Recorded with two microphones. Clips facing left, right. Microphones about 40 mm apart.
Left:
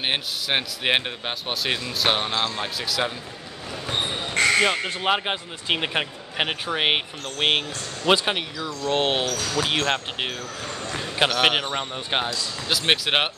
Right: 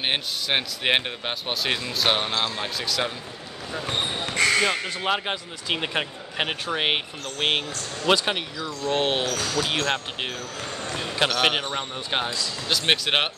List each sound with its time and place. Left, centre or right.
0.0 s speech: centre
4.6 s speech: left
8.3 s speech: centre